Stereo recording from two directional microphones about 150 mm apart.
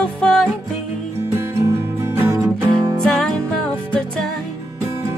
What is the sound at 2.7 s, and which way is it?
Music, 30° right (ahead or behind).